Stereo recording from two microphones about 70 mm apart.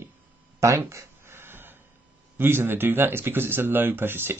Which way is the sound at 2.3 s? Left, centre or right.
Right.